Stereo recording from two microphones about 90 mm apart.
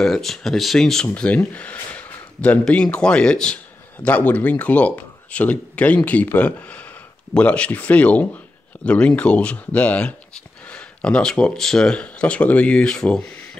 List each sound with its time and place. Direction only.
0.0 s speech: 5° left (ahead or behind)